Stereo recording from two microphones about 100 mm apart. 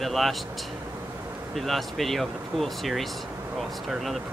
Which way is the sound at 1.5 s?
Centre (ahead or behind).